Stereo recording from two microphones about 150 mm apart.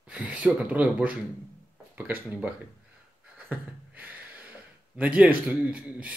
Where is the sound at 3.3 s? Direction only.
10° right (ahead or behind).